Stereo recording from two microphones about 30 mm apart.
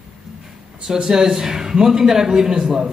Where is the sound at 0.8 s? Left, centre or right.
Right.